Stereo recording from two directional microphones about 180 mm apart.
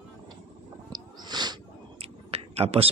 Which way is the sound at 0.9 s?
25° right (ahead or behind).